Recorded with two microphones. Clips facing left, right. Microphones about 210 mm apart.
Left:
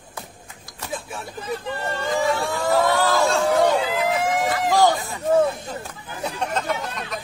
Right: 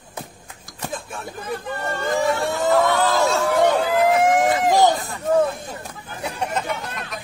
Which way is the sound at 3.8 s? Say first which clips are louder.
Right 5 dB; 55° right (ahead or behind).